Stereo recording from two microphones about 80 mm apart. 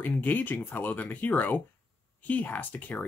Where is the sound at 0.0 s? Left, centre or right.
Left.